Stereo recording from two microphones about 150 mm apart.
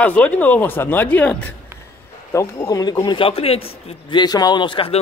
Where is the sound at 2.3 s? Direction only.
25° left (ahead or behind).